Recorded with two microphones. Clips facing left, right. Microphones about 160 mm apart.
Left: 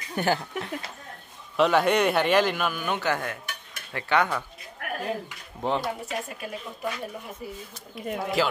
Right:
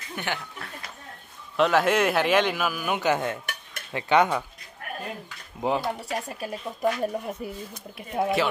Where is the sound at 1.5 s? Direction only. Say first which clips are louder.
Even; centre (ahead or behind); by 3.4 s 20° right (ahead or behind).